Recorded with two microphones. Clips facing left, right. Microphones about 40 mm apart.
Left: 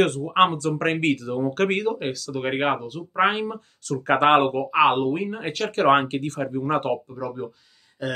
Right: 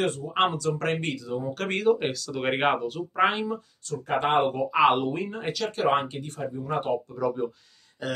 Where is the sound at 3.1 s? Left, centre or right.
Left.